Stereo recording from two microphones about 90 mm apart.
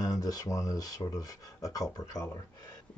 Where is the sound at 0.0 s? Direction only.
45° left (ahead or behind).